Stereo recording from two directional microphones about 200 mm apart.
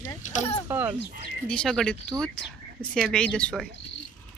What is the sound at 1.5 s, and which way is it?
Speech, centre (ahead or behind).